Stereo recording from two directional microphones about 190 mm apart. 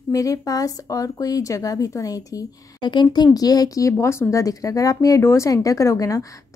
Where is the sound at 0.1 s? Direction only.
15° left (ahead or behind).